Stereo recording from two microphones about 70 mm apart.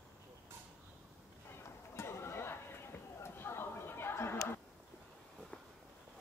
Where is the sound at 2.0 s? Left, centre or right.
Left.